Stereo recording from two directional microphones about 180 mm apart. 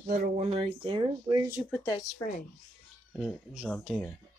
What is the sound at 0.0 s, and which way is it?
Speech, 40° right (ahead or behind).